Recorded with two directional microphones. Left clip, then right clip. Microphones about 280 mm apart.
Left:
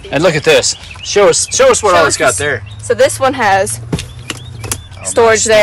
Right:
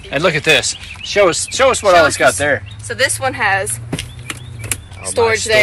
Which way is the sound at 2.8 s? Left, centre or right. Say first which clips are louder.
Left 9 dB; left.